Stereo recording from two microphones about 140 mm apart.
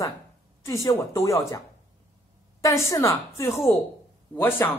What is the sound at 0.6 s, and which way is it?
A man's voice, 20° left (ahead or behind).